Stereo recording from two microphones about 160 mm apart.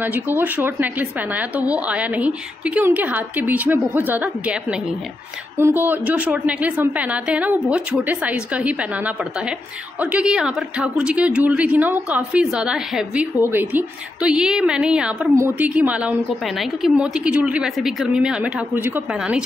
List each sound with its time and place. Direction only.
0.0 s speech: 10° right (ahead or behind)